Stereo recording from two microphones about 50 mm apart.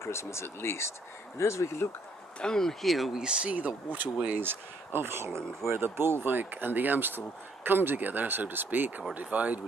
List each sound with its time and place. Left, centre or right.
0.0 s speech: left
2.4 s speech: centre
2.8 s speech: centre
3.2 s speech: centre